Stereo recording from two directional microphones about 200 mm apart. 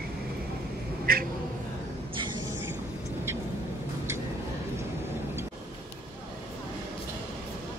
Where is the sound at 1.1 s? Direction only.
45° right (ahead or behind).